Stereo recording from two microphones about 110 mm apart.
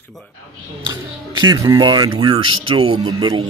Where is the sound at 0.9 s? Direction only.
35° right (ahead or behind).